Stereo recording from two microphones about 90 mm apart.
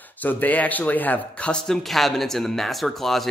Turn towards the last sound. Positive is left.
turn(degrees=0)  # may be behind; listen again after turning